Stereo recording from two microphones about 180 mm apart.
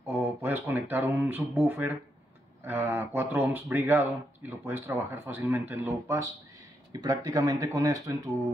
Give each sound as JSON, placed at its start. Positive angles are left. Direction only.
{"t": 0.0, "sound": "speech", "side_deg": -10}